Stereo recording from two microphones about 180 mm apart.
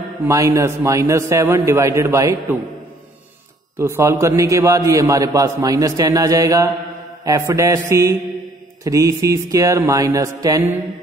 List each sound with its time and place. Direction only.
0.3 s a man's voice: 15° right (ahead or behind)
3.7 s a man's voice: 15° right (ahead or behind)